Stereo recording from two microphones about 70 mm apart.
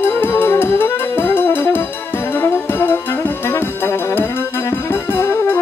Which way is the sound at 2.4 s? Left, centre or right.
Left.